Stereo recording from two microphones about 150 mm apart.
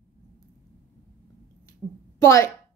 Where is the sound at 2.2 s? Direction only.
20° left (ahead or behind).